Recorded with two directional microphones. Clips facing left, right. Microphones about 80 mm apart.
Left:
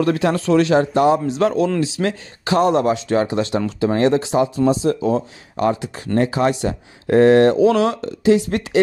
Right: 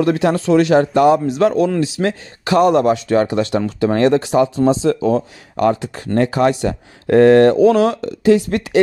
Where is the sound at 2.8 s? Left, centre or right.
Right.